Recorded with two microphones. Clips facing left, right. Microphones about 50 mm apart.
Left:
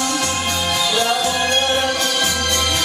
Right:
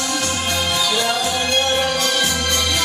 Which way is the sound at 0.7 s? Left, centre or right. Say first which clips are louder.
Left 2 dB; left.